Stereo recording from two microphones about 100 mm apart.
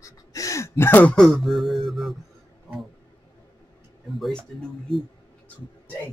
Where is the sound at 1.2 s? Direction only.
5° left (ahead or behind).